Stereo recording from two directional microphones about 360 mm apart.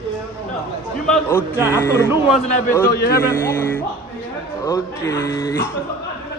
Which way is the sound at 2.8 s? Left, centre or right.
Left.